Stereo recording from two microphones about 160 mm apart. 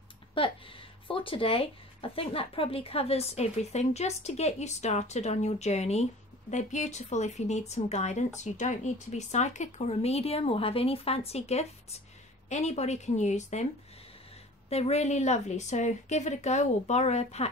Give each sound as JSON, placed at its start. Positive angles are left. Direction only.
{"t": 0.3, "sound": "speech", "side_deg": 35}
{"t": 14.7, "sound": "speech", "side_deg": 40}